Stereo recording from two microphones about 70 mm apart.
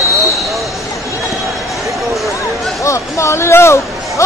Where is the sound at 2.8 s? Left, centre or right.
Left.